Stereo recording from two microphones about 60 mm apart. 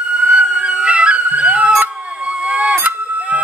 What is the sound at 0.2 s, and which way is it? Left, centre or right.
Music, right.